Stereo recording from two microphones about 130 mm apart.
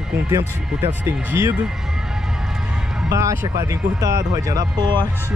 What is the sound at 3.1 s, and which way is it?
Speech, 25° right (ahead or behind).